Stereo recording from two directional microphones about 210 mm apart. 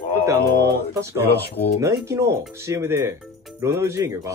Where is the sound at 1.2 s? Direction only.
50° left (ahead or behind).